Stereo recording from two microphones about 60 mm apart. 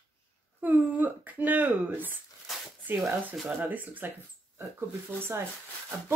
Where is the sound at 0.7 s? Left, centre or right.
Right.